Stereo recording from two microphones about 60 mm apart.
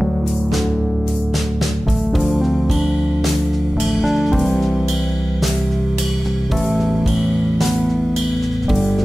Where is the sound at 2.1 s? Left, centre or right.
Centre.